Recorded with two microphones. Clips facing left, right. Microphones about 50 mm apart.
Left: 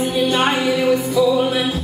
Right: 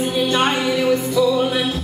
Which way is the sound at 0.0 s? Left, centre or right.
Centre.